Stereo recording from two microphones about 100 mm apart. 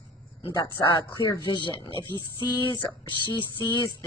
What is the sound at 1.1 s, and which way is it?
Speech, 45° left (ahead or behind).